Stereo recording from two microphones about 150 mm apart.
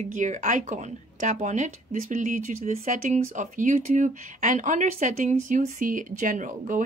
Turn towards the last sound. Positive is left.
turn(degrees=-60)  # may be behind; listen again after turning